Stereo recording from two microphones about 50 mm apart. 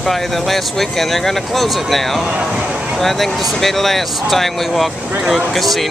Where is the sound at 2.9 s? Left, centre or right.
Centre.